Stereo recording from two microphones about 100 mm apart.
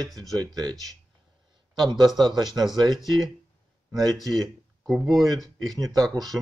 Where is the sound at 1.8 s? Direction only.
45° right (ahead or behind).